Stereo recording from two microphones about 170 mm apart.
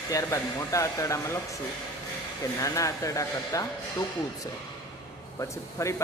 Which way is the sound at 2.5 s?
20° left (ahead or behind).